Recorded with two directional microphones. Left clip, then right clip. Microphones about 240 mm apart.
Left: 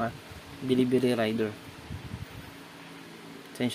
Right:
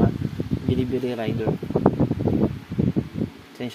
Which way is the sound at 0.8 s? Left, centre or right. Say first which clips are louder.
Left 3 dB; centre.